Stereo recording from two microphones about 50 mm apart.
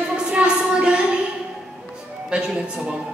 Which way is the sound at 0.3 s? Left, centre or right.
Right.